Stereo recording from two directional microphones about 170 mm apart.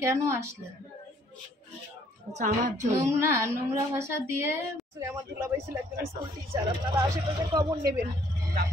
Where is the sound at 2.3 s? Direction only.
45° right (ahead or behind).